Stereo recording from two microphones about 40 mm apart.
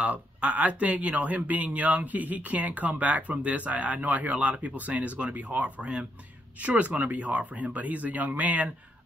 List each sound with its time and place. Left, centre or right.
0.0 s speech: right